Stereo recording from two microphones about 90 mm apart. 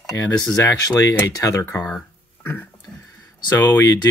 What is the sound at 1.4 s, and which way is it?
Speech, 35° left (ahead or behind).